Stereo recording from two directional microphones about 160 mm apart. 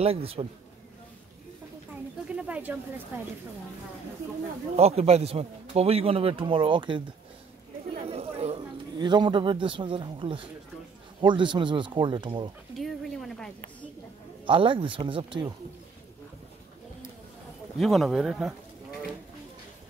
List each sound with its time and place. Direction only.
0.0 s a man's voice: 35° right (ahead or behind)
2.2 s speech: 10° right (ahead or behind)
4.7 s a man's voice: 40° right (ahead or behind)
8.1 s chatter: 35° right (ahead or behind)
8.9 s a man's voice: 30° right (ahead or behind)
12.7 s speech: centre (ahead or behind)
14.4 s a man's voice: 30° right (ahead or behind)
17.7 s a man's voice: centre (ahead or behind)